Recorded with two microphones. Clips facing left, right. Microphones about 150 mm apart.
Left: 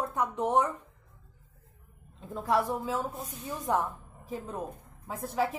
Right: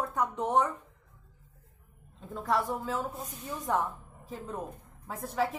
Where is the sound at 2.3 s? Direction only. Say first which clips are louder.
Left 2 dB; 5° left (ahead or behind).